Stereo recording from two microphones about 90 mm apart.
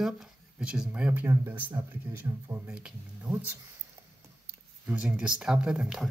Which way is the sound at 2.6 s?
10° right (ahead or behind).